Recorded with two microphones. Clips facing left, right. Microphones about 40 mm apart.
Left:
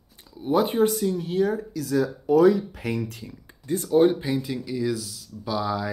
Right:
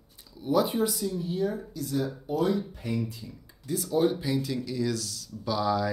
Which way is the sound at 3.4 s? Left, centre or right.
Left.